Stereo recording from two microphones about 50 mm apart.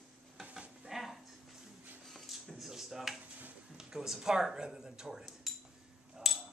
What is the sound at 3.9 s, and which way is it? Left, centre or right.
Speech, centre.